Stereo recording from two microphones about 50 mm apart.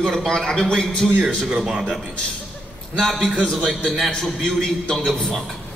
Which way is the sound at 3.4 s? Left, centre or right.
Right.